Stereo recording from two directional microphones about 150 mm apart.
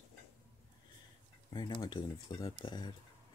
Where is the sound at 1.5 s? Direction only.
30° left (ahead or behind).